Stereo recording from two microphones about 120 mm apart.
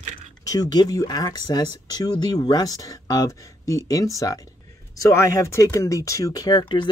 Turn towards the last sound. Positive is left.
turn(degrees=40)  # may be behind; listen again after turning